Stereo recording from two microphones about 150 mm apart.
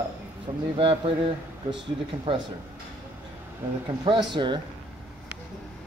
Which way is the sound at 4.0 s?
30° right (ahead or behind).